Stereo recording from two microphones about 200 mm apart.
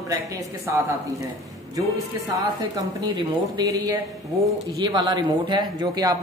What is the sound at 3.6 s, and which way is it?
Speech, 20° right (ahead or behind).